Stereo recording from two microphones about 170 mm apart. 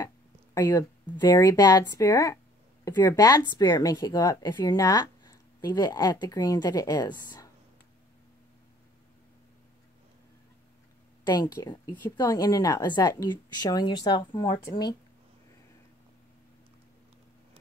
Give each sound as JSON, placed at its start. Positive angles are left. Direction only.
{"t": 0.6, "sound": "speech", "side_deg": 15}
{"t": 11.2, "sound": "speech", "side_deg": 25}